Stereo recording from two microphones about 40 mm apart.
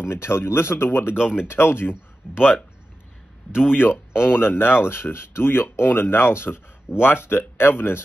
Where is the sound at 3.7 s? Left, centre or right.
Left.